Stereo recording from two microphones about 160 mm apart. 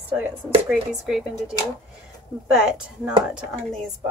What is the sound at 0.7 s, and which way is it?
Speech, 5° right (ahead or behind).